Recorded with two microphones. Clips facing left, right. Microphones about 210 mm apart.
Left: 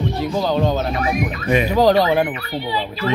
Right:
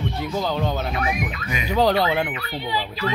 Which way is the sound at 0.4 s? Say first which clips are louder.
Left 6 dB; 15° left (ahead or behind).